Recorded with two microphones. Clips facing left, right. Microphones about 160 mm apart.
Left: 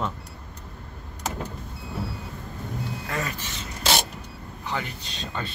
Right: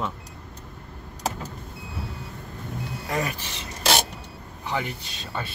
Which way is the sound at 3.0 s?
15° right (ahead or behind).